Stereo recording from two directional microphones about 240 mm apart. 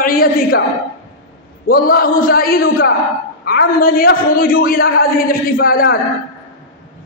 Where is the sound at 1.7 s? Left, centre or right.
Left.